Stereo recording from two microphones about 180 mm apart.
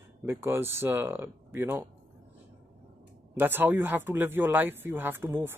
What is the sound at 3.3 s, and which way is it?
Speech, 10° right (ahead or behind).